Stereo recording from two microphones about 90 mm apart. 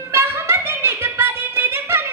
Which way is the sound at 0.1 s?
25° right (ahead or behind).